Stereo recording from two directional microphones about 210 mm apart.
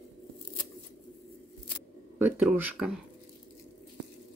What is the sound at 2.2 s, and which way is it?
Speech, 10° right (ahead or behind).